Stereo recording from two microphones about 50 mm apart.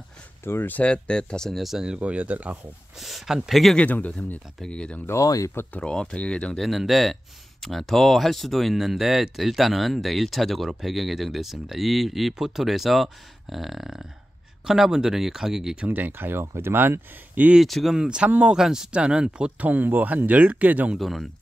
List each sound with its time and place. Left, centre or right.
0.7 s speech: left
1.5 s speech: centre
1.9 s speech: right
3.0 s speech: centre
3.8 s speech: left
4.6 s speech: left
6.5 s speech: centre
16.1 s speech: right
17.6 s speech: centre
17.9 s speech: centre
19.6 s speech: right
21.0 s speech: centre